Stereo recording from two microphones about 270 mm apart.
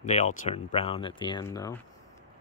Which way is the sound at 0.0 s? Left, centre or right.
Left.